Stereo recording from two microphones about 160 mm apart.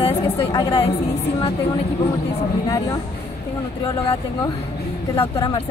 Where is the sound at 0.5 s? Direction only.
30° left (ahead or behind).